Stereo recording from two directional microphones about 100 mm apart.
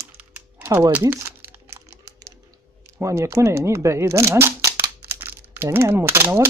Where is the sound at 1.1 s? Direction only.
20° right (ahead or behind).